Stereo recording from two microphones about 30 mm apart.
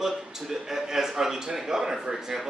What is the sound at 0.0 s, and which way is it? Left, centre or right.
A man's voice, centre.